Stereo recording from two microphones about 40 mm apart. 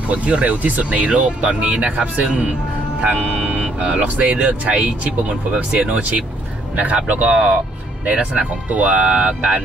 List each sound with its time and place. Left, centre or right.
0.1 s speech: right
5.8 s speech: right